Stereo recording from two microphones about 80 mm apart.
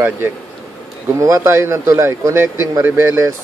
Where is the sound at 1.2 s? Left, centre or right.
Right.